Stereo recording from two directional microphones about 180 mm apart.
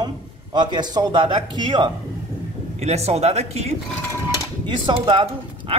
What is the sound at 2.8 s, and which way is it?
Speech, 35° right (ahead or behind).